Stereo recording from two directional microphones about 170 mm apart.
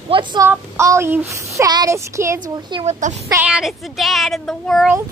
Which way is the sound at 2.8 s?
40° right (ahead or behind).